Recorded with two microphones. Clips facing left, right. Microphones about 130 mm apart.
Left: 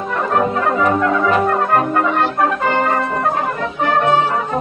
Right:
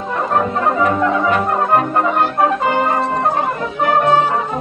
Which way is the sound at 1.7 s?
15° right (ahead or behind).